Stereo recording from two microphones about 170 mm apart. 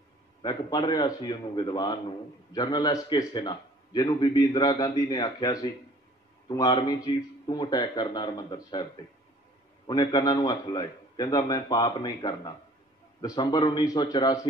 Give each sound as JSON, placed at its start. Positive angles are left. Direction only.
{"t": 0.4, "sound": "a man's voice", "side_deg": 25}
{"t": 9.8, "sound": "a man's voice", "side_deg": 25}